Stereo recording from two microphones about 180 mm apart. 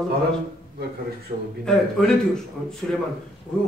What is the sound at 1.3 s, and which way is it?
Speech, 40° right (ahead or behind).